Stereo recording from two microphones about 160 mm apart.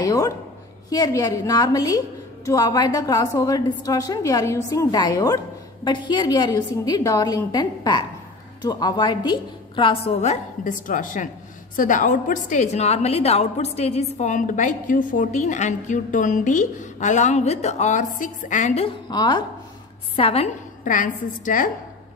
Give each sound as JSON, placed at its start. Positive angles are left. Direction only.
{"t": 0.0, "sound": "a sound", "side_deg": 20}
{"t": 0.8, "sound": "a woman's voice", "side_deg": 25}
{"t": 10.2, "sound": "a woman's voice", "side_deg": 50}
{"t": 18.9, "sound": "a woman's voice", "side_deg": 25}
{"t": 20.8, "sound": "a woman's voice", "side_deg": 55}